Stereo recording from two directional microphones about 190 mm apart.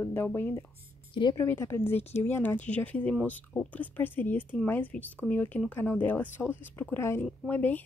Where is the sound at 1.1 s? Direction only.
25° left (ahead or behind).